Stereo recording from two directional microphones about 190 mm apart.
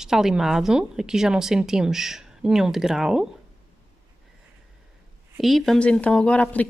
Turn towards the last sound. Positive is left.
turn(degrees=5)  # may be behind; listen again after turning